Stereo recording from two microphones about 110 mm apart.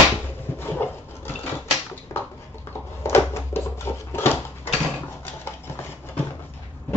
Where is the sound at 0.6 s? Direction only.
20° left (ahead or behind).